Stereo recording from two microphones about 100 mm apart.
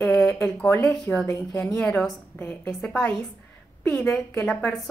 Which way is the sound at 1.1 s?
25° left (ahead or behind).